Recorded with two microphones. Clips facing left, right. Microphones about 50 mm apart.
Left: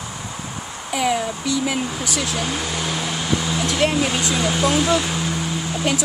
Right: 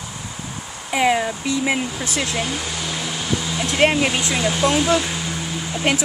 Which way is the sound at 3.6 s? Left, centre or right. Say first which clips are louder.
Right 4 dB; right.